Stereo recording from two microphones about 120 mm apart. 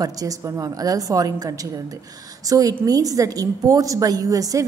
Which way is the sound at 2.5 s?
30° right (ahead or behind).